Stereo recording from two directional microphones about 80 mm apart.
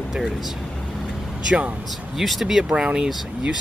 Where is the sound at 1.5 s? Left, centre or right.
Centre.